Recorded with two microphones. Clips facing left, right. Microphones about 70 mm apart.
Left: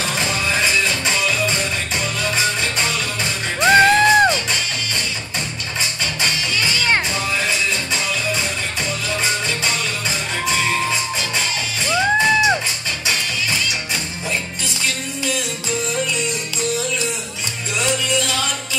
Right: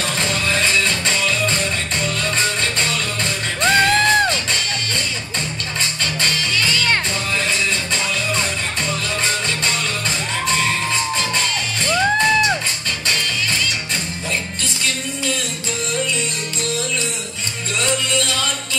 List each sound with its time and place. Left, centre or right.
0.0 s music: centre
6.2 s music: centre
11.3 s music: centre